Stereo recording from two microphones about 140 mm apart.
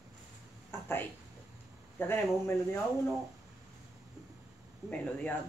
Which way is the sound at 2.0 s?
15° left (ahead or behind).